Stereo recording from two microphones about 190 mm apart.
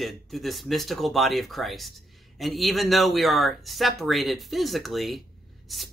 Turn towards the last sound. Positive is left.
turn(degrees=0)  # may be behind; listen again after turning